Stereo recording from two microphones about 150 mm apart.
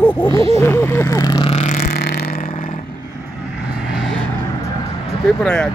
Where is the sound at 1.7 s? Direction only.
90° left.